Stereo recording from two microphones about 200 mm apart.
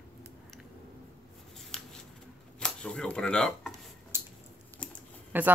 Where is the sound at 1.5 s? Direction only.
Centre (ahead or behind).